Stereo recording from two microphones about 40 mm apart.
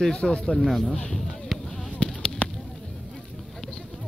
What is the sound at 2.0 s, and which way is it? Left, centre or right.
Fireworks, left.